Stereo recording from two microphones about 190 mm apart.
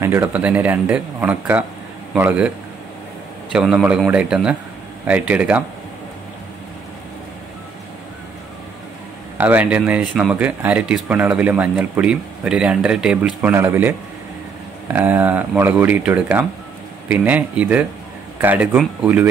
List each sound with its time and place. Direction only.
0.0 s speech: 15° right (ahead or behind)
3.5 s speech: 5° right (ahead or behind)
9.4 s speech: 10° right (ahead or behind)